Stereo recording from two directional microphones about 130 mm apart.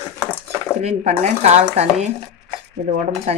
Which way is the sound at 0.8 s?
55° right (ahead or behind).